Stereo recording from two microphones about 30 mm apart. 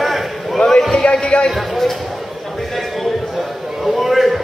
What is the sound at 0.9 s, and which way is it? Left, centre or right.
Speech, left.